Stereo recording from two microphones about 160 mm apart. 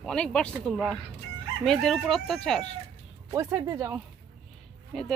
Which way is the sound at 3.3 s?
20° right (ahead or behind).